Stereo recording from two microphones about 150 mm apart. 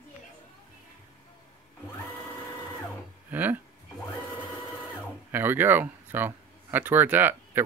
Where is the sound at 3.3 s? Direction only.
10° right (ahead or behind).